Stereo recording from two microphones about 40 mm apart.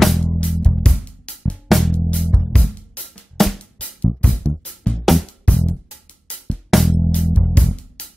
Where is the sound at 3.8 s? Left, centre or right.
Left.